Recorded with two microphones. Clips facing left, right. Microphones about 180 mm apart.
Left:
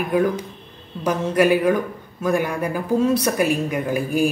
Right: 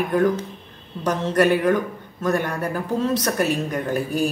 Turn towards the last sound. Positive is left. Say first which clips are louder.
# left 2 dB
turn(degrees=10)  # may be behind; listen again after turning